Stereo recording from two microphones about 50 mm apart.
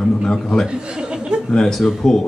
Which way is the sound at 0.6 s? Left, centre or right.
Centre.